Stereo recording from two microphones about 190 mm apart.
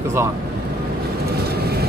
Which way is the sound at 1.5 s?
55° right (ahead or behind).